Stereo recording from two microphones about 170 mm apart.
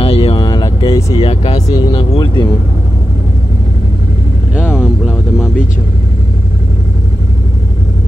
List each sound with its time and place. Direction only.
0.0 s vehicle: 35° left (ahead or behind)
1.1 s speech: 35° left (ahead or behind)